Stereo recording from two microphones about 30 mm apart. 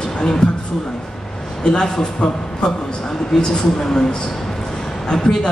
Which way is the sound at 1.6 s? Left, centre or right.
Left.